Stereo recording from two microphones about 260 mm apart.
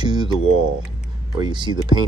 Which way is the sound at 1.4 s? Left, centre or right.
Centre.